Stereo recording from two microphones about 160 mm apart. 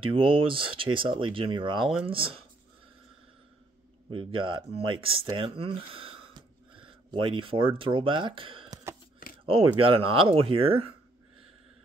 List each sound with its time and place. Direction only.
0.0 s speech: 35° right (ahead or behind)
4.1 s speech: 35° right (ahead or behind)